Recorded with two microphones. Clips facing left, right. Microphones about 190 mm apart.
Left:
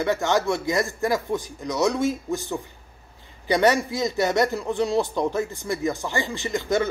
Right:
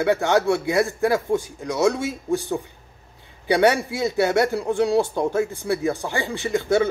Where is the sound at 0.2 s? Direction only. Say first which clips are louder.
Right 3 dB; 10° right (ahead or behind).